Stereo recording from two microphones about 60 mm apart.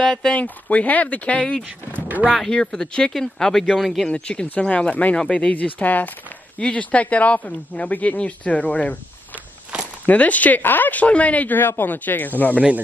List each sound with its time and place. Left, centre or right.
0.0 s speech: centre
0.3 s speech: left
2.0 s a sound: right
2.5 s speech: centre
4.1 s speech: centre
10.0 s speech: left
12.5 s speech: right